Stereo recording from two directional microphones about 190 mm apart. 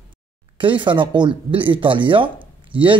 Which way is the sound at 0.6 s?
25° right (ahead or behind).